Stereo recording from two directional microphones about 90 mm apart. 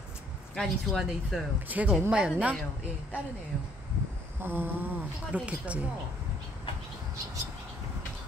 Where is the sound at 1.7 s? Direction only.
15° right (ahead or behind).